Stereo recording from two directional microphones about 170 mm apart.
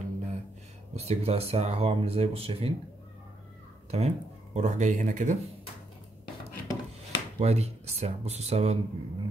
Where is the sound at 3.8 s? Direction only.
40° right (ahead or behind).